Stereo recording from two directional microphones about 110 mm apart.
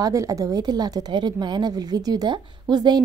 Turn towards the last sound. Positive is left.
turn(degrees=-40)  # may be behind; listen again after turning